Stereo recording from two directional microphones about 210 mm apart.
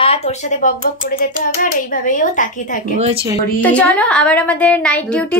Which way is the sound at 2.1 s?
40° left (ahead or behind).